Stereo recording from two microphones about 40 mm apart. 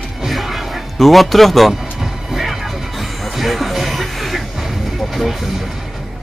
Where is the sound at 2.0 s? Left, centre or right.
Centre.